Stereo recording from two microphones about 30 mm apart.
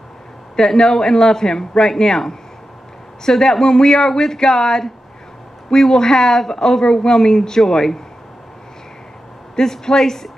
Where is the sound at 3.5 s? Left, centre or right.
Centre.